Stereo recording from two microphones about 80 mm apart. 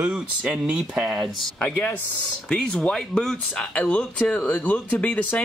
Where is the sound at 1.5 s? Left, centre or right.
Centre.